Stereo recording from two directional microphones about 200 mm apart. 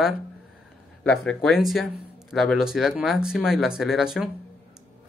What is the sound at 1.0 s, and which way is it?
Speech, 5° left (ahead or behind).